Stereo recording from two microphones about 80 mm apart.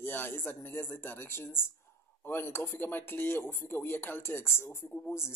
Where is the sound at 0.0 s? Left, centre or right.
Left.